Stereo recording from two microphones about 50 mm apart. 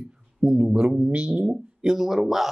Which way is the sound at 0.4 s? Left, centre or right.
Centre.